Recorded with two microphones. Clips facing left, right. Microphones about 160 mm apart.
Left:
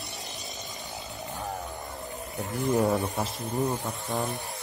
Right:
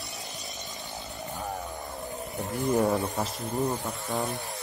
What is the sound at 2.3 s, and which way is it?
Speech, centre (ahead or behind).